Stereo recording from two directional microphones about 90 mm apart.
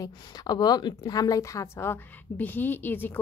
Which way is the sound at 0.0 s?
45° left (ahead or behind).